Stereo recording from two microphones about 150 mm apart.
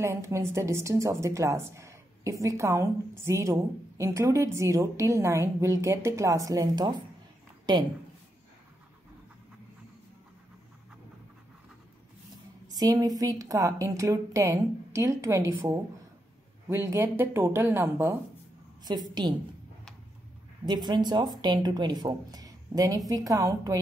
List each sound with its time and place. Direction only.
0.0 s a woman's voice: 20° right (ahead or behind)
12.7 s a woman's voice: 25° right (ahead or behind)
18.9 s a woman's voice: 30° right (ahead or behind)
20.6 s a woman's voice: 30° right (ahead or behind)